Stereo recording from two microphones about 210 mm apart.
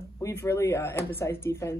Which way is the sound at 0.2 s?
10° left (ahead or behind).